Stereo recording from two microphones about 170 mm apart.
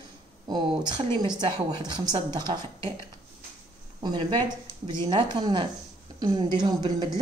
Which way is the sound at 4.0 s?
25° right (ahead or behind).